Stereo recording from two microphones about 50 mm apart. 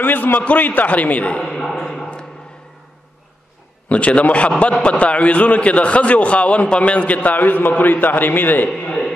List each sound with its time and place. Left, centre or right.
0.0 s a man's voice: left
1.4 s a sound: centre
3.9 s a man's voice: left